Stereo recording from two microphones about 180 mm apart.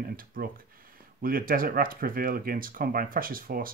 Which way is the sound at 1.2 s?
55° right (ahead or behind).